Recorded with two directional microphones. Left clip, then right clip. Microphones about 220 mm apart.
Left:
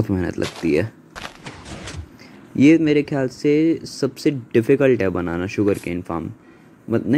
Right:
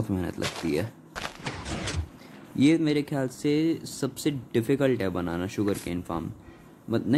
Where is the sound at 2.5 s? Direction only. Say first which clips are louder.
Left 9 dB; 10° left (ahead or behind).